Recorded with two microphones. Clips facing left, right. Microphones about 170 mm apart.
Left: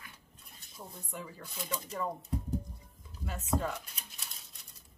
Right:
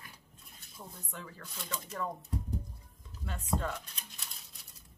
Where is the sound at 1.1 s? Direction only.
10° left (ahead or behind).